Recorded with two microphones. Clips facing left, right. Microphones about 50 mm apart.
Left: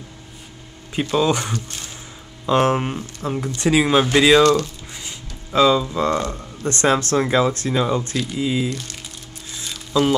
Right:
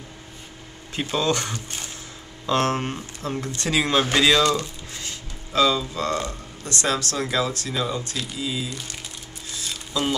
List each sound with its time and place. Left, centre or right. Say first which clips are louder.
1.1 s speech: left 4 dB; centre
1.5 s speech: left 4 dB; centre
2.4 s speech: left 5 dB; centre
5.0 s a sound: left 1 dB; left
6.3 s speech: left 5 dB; left